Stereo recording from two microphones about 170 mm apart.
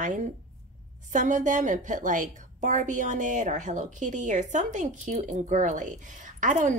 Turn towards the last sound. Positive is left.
turn(degrees=-50)  # may be behind; listen again after turning